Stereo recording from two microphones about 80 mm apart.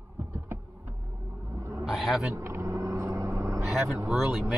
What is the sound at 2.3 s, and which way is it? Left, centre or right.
Vehicle, right.